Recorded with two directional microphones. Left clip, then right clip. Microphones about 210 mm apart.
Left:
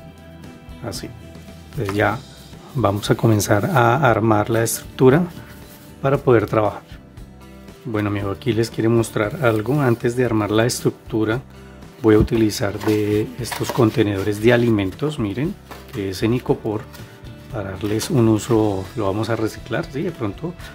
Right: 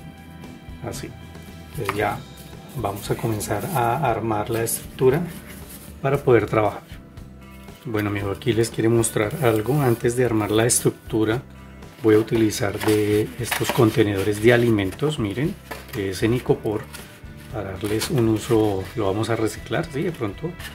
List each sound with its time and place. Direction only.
2.8 s speech: 45° left (ahead or behind)
6.0 s speech: 25° left (ahead or behind)
7.9 s speech: 20° left (ahead or behind)
18.1 s speech: 30° left (ahead or behind)
18.5 s speech: 20° left (ahead or behind)